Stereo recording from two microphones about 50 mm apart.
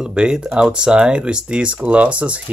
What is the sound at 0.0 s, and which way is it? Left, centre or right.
Speech, centre.